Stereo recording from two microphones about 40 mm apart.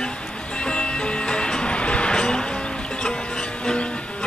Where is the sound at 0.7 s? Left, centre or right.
Left.